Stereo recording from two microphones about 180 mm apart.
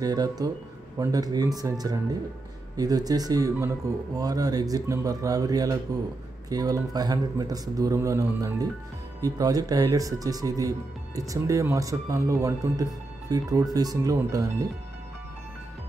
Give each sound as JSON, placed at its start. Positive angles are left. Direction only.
{"t": 0.0, "sound": "speech", "side_deg": -20}